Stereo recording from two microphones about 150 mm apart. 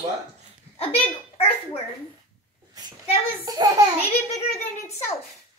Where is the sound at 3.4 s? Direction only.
25° right (ahead or behind).